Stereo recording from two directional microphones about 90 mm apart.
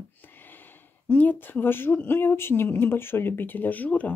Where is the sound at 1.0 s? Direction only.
15° left (ahead or behind).